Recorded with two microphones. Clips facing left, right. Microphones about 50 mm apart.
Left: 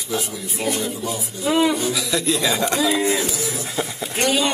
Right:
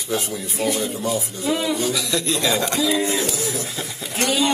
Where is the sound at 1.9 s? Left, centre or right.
Centre.